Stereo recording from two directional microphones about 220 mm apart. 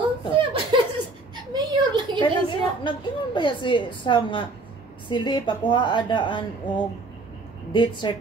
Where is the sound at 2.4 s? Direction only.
20° left (ahead or behind).